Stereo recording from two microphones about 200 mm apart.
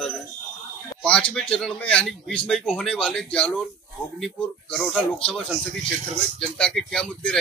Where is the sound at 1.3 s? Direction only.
5° left (ahead or behind).